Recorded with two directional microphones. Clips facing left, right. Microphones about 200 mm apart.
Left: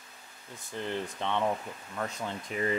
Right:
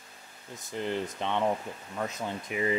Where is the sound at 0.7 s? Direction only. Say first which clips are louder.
Right 3 dB; 15° right (ahead or behind).